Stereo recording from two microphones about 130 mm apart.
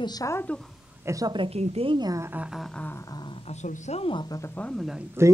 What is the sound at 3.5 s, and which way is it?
Speech, 60° left (ahead or behind).